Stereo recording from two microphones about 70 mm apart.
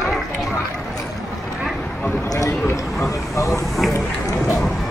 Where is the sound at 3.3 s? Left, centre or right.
Left.